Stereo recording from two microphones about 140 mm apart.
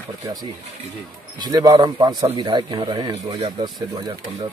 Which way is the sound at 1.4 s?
30° right (ahead or behind).